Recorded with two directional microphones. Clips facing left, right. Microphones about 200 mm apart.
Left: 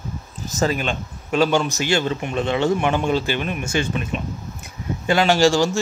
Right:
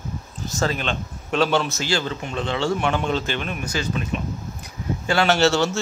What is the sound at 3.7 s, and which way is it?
Speech, 20° left (ahead or behind).